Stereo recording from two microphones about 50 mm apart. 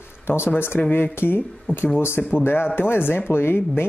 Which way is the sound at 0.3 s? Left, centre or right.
Left.